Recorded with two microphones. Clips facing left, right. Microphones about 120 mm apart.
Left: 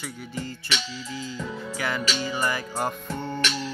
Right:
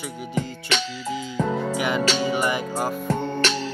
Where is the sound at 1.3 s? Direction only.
65° right (ahead or behind).